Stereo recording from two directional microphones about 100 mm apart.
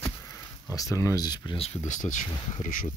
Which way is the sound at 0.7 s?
35° left (ahead or behind).